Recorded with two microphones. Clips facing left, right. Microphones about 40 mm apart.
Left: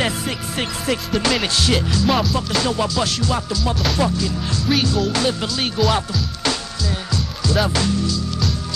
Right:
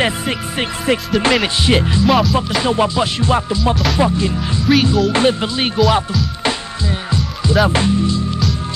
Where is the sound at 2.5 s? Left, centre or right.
Right.